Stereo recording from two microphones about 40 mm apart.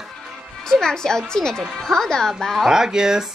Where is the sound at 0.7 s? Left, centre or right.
Centre.